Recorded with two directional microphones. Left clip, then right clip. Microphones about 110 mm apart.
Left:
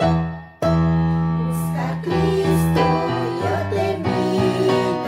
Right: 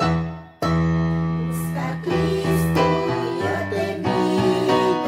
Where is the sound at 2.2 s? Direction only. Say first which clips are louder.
Left 4 dB; 15° right (ahead or behind).